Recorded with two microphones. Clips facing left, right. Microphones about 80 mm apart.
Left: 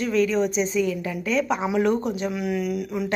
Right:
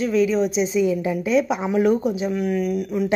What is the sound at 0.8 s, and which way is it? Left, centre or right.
Speech, centre.